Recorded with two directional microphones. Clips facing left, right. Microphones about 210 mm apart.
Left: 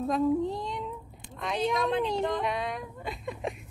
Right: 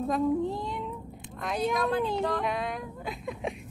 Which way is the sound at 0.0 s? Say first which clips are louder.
Even; centre (ahead or behind).